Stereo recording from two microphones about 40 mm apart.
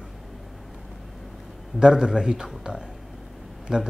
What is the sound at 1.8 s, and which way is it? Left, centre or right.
Speech, centre.